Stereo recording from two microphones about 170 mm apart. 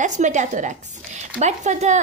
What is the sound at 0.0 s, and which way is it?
A woman's voice, 45° right (ahead or behind).